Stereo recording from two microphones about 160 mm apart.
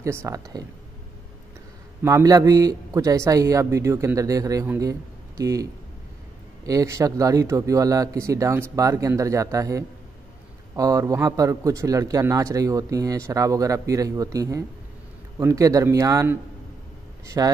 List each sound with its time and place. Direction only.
0.0 s a man's voice: 20° right (ahead or behind)
2.0 s a man's voice: 20° right (ahead or behind)
17.4 s a man's voice: 20° right (ahead or behind)